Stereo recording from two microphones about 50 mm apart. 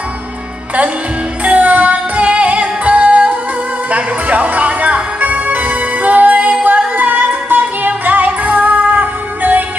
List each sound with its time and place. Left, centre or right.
1.4 s music: right